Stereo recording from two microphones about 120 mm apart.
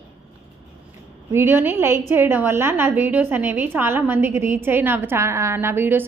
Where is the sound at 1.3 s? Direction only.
20° right (ahead or behind).